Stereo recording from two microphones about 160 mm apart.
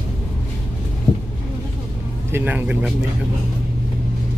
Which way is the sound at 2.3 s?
10° right (ahead or behind).